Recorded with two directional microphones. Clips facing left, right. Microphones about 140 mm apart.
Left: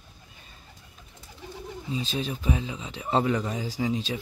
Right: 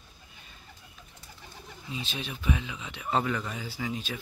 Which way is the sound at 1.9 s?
35° left (ahead or behind).